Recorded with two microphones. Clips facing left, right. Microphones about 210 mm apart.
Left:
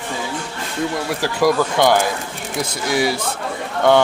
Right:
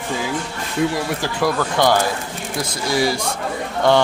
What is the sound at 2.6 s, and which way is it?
Speech, 5° left (ahead or behind).